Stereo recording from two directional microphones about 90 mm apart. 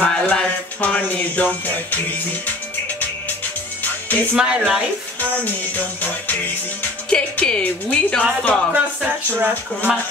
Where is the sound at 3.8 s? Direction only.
20° left (ahead or behind).